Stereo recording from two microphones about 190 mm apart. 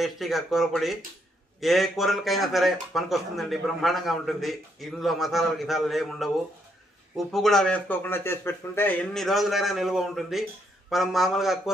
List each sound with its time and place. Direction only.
0.0 s a man's voice: centre (ahead or behind)